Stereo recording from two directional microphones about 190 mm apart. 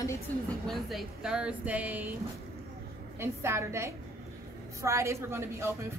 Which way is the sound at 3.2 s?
15° right (ahead or behind).